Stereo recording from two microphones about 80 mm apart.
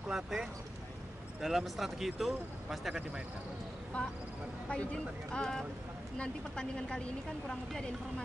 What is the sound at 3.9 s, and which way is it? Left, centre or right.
Speech, centre.